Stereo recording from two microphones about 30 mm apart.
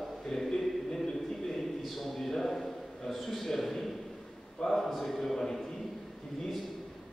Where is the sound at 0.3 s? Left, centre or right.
Centre.